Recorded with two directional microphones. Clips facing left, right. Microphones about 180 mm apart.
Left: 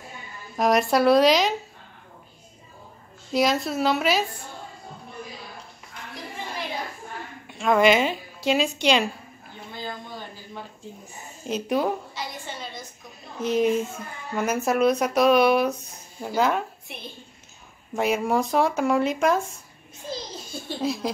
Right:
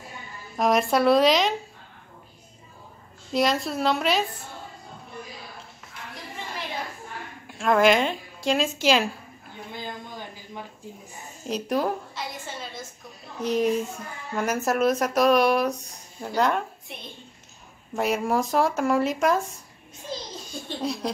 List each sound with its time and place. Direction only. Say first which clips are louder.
0.6 s a child's voice: left 1 dB; centre (ahead or behind)
3.3 s a child's voice: left 1 dB; centre (ahead or behind)
7.4 s a woman's voice: left 1 dB; centre (ahead or behind)
9.8 s a sound: left 1 dB; 15° right (ahead or behind)
11.4 s a child's voice: left 1 dB; centre (ahead or behind)
13.4 s a child's voice: left 1 dB; centre (ahead or behind)
17.9 s a child's voice: left 1 dB; centre (ahead or behind)
20.6 s a child's voice: left 2 dB; 5° left (ahead or behind)